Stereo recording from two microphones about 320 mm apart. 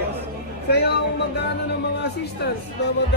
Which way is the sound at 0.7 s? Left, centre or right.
Left.